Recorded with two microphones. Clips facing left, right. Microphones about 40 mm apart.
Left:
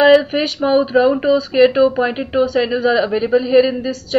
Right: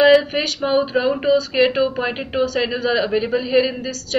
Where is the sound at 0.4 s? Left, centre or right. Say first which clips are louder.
Left 4 dB; centre.